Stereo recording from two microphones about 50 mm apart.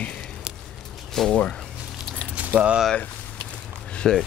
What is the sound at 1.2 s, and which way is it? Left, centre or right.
Speech, centre.